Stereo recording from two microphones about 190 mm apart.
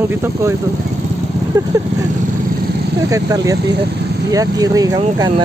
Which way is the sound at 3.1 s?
15° right (ahead or behind).